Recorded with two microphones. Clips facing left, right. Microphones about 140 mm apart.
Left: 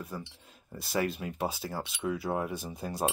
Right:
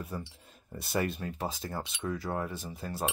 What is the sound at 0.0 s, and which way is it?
Speech, centre (ahead or behind).